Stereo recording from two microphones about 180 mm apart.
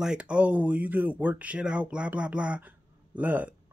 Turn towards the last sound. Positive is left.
turn(degrees=-10)  # may be behind; listen again after turning